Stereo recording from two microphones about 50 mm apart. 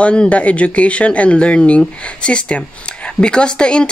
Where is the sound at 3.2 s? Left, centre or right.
Centre.